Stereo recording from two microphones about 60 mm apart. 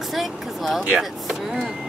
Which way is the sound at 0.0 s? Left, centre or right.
Centre.